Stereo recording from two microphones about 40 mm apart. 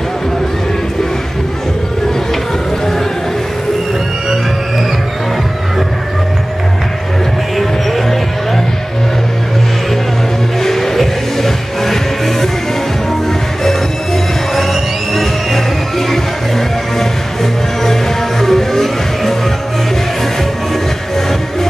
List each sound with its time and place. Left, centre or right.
7.5 s music: centre
10.6 s music: centre
14.5 s music: centre